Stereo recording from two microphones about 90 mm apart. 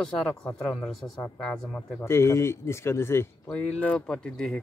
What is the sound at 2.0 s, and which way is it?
Speech, 30° left (ahead or behind).